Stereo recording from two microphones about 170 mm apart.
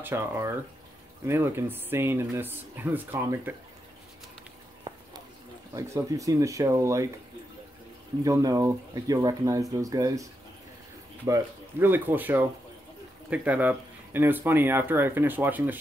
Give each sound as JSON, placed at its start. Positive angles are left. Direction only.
{"t": 0.0, "sound": "speech", "side_deg": -15}
{"t": 5.8, "sound": "speech", "side_deg": -20}
{"t": 8.2, "sound": "speech", "side_deg": -20}
{"t": 11.2, "sound": "speech", "side_deg": -15}